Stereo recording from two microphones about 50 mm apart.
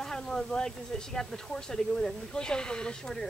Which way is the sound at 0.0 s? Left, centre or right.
Centre.